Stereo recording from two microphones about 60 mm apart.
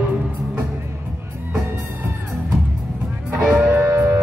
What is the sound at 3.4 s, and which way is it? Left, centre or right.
Music, centre.